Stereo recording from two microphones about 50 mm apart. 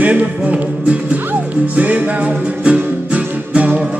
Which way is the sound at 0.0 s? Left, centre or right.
Right.